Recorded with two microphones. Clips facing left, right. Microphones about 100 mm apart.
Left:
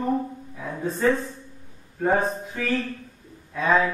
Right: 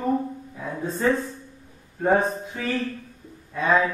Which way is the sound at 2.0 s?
Centre (ahead or behind).